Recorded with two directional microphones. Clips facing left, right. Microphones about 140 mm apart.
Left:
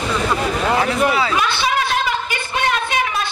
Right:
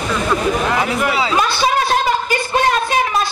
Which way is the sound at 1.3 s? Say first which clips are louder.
Right 3 dB; 35° right (ahead or behind).